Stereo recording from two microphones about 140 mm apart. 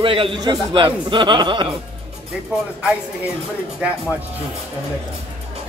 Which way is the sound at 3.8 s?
10° right (ahead or behind).